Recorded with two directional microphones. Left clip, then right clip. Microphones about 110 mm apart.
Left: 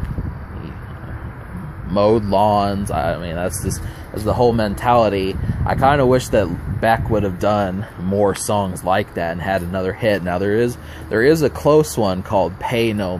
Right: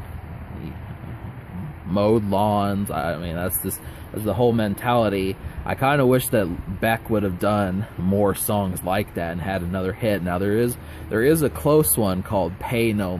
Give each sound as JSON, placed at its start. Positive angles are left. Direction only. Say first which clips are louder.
{"t": 2.0, "sound": "speech", "louder": "left 5 dB", "side_deg": -25}
{"t": 8.8, "sound": "speech", "louder": "left 6 dB", "side_deg": -25}